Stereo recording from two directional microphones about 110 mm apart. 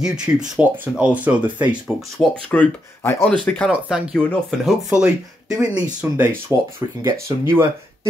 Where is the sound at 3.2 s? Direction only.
10° left (ahead or behind).